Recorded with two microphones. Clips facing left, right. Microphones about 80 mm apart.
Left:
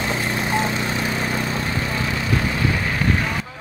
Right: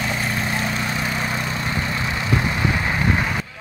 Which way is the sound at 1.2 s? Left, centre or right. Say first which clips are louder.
Left 1 dB; centre.